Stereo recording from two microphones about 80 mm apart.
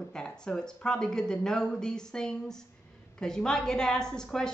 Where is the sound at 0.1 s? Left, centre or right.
Centre.